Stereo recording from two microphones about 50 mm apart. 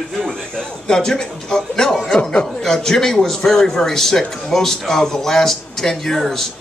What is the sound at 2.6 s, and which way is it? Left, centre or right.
A man's voice, centre.